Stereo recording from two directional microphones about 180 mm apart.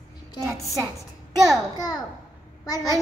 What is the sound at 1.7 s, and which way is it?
Speech, 20° left (ahead or behind).